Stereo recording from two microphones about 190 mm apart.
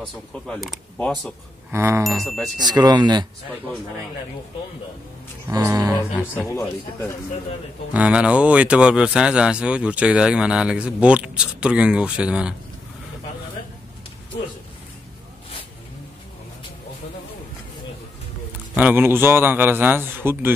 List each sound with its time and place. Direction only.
0.5 s speech: 5° left (ahead or behind)
1.7 s a man's voice: 15° right (ahead or behind)
2.0 s speech: centre (ahead or behind)
2.6 s speech: 20° right (ahead or behind)
5.5 s a man's voice: 15° right (ahead or behind)
6.3 s a man's voice: 15° left (ahead or behind)
7.9 s speech: 5° right (ahead or behind)
18.8 s a man's voice: 10° right (ahead or behind)